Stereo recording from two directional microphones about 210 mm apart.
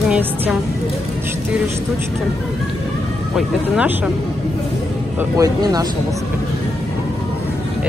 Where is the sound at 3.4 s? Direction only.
5° right (ahead or behind).